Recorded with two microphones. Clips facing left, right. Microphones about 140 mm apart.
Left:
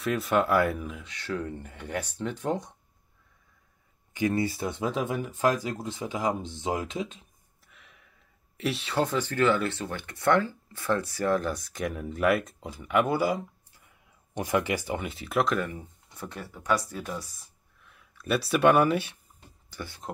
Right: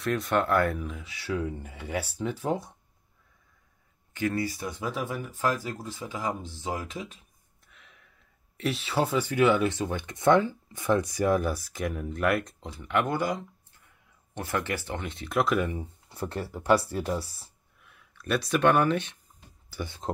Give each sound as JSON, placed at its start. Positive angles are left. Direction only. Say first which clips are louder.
{"t": 0.0, "sound": "speech", "louder": "left 1 dB", "side_deg": 0}
{"t": 4.1, "sound": "speech", "louder": "left 2 dB", "side_deg": 15}
{"t": 4.4, "sound": "speech", "louder": "left 3 dB", "side_deg": 25}
{"t": 7.6, "sound": "a sound", "louder": "even", "side_deg": 0}
{"t": 8.5, "sound": "speech", "louder": "even", "side_deg": 0}
{"t": 16.1, "sound": "speech", "louder": "right 6 dB", "side_deg": -35}
{"t": 17.8, "sound": "speech", "louder": "left 1 dB", "side_deg": 0}
{"t": 19.8, "sound": "speech", "louder": "right 3 dB", "side_deg": -25}